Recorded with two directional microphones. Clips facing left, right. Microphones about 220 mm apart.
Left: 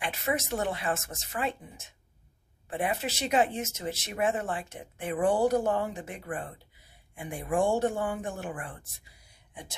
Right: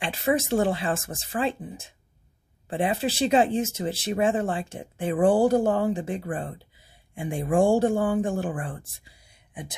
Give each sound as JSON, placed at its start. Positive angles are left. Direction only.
{"t": 0.0, "sound": "speech", "side_deg": -30}
{"t": 9.5, "sound": "speech", "side_deg": -20}